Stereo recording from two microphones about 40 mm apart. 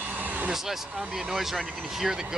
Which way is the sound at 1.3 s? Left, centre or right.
Centre.